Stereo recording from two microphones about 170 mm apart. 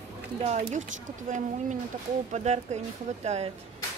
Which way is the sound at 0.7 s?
45° right (ahead or behind).